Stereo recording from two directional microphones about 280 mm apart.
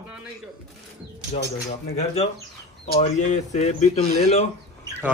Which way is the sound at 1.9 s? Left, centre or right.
Left.